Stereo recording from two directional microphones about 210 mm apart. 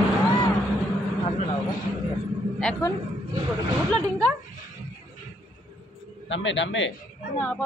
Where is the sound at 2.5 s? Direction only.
5° left (ahead or behind).